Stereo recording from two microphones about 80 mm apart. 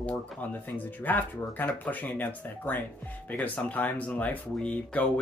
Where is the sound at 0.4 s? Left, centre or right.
Left.